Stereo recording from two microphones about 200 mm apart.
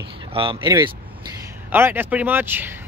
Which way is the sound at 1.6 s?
10° right (ahead or behind).